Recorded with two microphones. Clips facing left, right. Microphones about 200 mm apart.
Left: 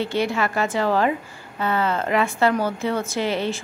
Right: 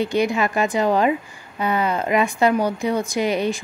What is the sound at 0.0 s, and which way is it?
Speech, 15° right (ahead or behind).